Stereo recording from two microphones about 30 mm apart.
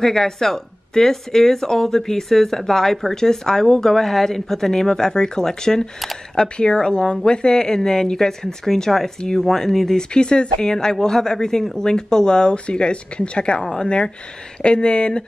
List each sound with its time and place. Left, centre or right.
0.0 s speech: centre
6.5 s speech: left; by 9.9 s centre
9.9 s speech: left